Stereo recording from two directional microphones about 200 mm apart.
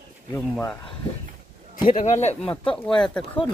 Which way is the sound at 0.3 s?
10° left (ahead or behind).